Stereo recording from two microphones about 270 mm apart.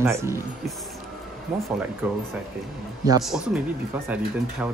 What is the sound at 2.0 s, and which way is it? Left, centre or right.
Speech, centre.